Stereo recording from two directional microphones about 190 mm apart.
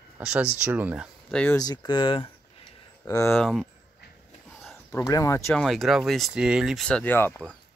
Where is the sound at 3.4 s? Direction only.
Centre (ahead or behind).